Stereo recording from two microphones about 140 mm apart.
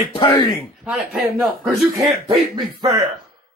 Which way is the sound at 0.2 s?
30° left (ahead or behind).